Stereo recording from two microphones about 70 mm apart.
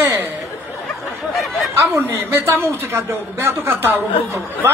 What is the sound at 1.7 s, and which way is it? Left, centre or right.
Speech, right.